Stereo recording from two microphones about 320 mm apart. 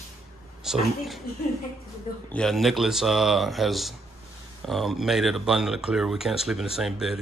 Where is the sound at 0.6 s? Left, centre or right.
Centre.